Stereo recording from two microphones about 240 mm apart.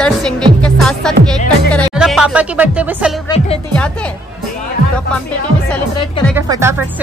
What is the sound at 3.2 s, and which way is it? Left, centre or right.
Speech, left.